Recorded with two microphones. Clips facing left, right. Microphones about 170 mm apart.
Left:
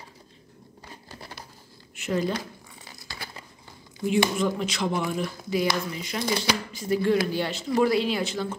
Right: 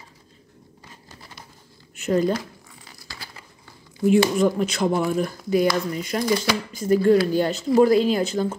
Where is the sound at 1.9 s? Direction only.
40° right (ahead or behind).